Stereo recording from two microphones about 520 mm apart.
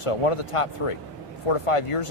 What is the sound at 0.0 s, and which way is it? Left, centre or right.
Speech, left.